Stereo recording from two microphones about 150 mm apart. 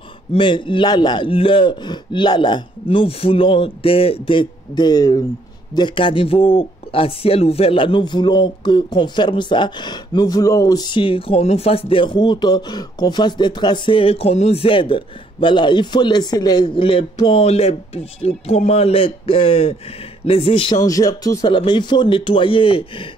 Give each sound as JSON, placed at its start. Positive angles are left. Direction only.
{"t": 0.3, "sound": "a man's voice", "side_deg": 35}
{"t": 20.8, "sound": "a man's voice", "side_deg": 25}